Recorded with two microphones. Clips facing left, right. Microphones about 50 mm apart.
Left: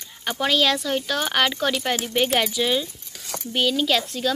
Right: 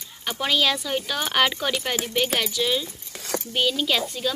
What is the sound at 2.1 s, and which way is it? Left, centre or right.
Speech, centre.